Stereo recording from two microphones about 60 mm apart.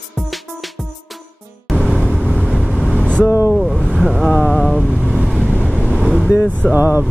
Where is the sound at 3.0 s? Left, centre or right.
Centre.